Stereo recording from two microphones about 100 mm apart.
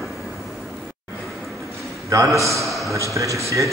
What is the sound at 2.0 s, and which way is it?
Speech, 30° right (ahead or behind).